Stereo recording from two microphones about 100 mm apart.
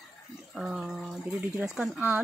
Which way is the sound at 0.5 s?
5° right (ahead or behind).